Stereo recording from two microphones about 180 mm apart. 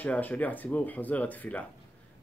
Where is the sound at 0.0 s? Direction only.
10° left (ahead or behind).